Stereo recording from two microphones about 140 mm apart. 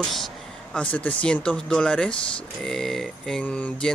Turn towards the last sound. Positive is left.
turn(degrees=5)  # may be behind; listen again after turning